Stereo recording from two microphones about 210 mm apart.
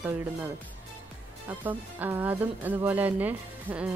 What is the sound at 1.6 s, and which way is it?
Speech, 10° right (ahead or behind).